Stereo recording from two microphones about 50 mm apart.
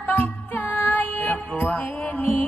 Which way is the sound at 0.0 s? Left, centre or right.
Left.